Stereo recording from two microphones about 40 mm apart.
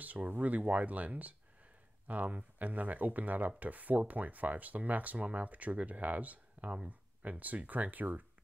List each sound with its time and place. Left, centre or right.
0.0 s speech: right